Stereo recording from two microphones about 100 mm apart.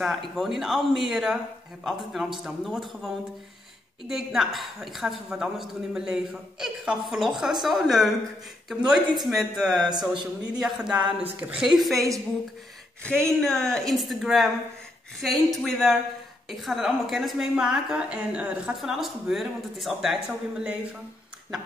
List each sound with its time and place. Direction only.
0.0 s a woman's voice: centre (ahead or behind)
4.1 s a woman's voice: centre (ahead or behind)
9.8 s speech: 45° right (ahead or behind)
10.6 s a woman's voice: 5° right (ahead or behind)